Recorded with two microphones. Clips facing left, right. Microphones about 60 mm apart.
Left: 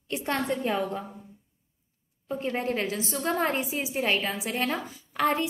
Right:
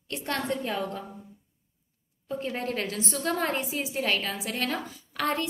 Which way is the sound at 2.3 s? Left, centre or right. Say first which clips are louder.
Left 2 dB; centre.